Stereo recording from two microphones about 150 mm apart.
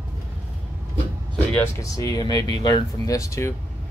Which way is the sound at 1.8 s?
25° left (ahead or behind).